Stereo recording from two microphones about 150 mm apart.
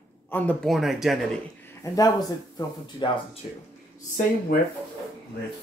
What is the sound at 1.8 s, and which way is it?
Speech, 25° left (ahead or behind).